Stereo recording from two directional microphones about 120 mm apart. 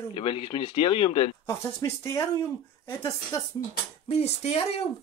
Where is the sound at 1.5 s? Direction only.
25° left (ahead or behind).